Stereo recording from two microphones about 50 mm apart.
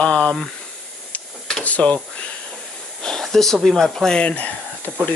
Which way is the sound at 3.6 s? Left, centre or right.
Centre.